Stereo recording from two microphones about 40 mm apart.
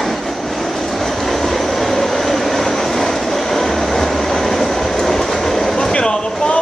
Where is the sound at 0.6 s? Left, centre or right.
Centre.